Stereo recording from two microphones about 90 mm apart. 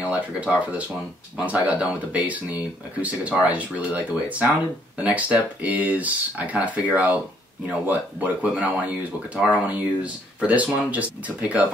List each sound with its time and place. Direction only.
0.1 s speech: 10° right (ahead or behind)